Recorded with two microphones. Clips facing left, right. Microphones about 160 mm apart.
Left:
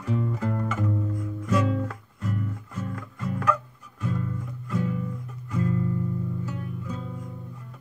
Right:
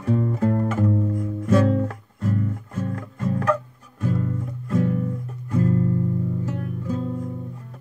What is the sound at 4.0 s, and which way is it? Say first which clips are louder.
Music: right 5 dB; 35° right (ahead or behind).